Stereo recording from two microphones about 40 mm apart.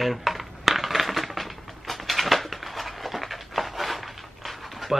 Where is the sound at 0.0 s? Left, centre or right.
Centre.